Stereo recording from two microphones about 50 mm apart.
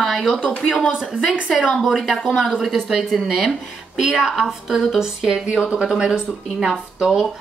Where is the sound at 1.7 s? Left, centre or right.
Centre.